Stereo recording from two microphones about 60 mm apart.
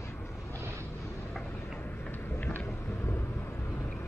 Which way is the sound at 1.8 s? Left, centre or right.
Left.